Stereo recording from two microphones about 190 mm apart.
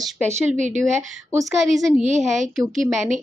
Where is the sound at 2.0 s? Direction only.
40° right (ahead or behind).